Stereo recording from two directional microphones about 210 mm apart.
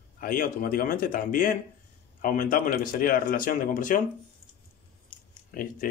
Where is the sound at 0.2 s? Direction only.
45° left (ahead or behind).